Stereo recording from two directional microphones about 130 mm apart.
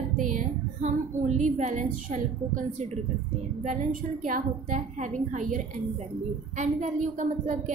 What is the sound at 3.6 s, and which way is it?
A woman's voice, 85° right.